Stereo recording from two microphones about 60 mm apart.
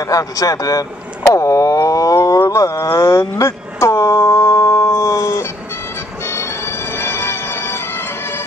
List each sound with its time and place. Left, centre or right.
0.0 s speech: left
1.3 s a sound: left
6.2 s music: left